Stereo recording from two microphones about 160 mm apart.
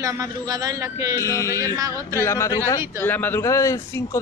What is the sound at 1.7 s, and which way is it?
Speech, 20° right (ahead or behind).